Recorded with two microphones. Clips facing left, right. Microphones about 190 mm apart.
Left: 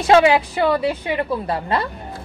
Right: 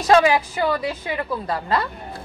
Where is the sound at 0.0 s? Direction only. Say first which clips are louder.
Left 2 dB; 25° left (ahead or behind).